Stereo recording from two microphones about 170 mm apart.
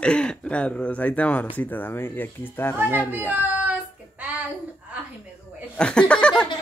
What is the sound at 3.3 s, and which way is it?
Child singing, 10° right (ahead or behind).